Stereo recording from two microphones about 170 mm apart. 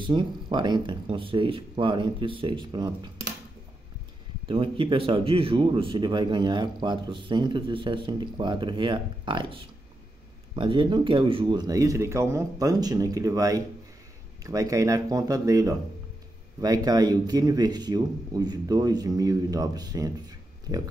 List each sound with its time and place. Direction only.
0.0 s speech: 30° right (ahead or behind)
4.5 s speech: 30° right (ahead or behind)